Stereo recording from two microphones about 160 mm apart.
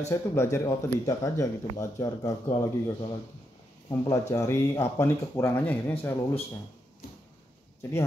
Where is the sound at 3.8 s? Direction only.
20° left (ahead or behind).